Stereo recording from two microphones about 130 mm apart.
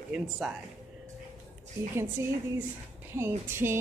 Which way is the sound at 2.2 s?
20° right (ahead or behind).